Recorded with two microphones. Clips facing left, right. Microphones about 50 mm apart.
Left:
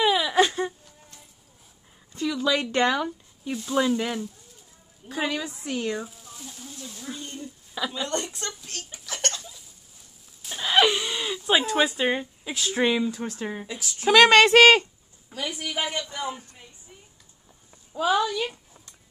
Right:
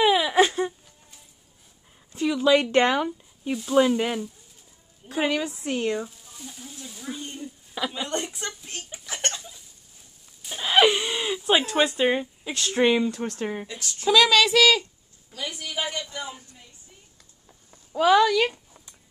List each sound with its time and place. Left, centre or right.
0.0 s whimper: centre
2.1 s speech: centre
3.5 s speech: centre
3.8 s speech: centre
5.7 s speech: centre
10.4 s a sound: centre
11.7 s speech: centre
13.7 s speech: centre
14.0 s speech: left
15.2 s a woman's voice: left
17.9 s speech: right